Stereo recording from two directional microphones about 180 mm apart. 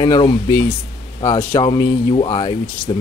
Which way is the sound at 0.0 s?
25° left (ahead or behind).